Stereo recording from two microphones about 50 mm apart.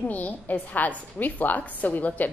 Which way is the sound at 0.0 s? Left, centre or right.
Left.